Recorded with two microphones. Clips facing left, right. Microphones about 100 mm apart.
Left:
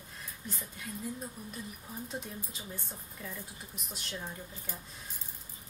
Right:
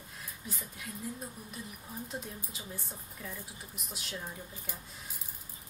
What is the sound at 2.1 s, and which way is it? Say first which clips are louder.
A woman's voice: left 1 dB; centre (ahead or behind).